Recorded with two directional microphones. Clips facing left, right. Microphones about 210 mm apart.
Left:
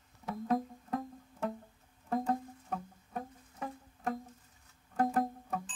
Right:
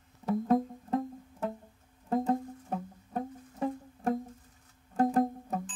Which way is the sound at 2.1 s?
25° right (ahead or behind).